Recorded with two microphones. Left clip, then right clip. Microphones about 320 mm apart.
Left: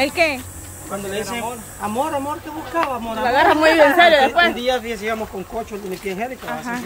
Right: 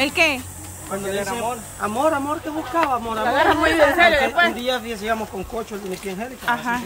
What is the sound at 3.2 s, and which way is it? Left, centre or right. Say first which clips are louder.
A woman's voice: left 4 dB; left.